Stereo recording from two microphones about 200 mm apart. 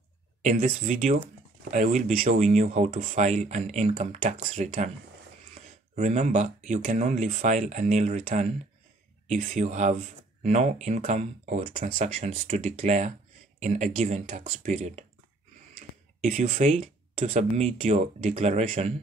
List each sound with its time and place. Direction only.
0.4 s speech: 35° right (ahead or behind)
16.2 s speech: 40° right (ahead or behind)